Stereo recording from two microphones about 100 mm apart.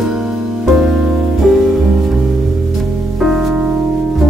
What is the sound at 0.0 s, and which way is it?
Music, 5° right (ahead or behind).